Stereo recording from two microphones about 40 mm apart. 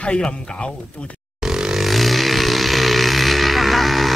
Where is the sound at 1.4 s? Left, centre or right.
Centre.